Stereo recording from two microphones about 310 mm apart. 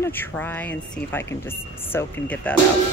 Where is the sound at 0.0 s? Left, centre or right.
Centre.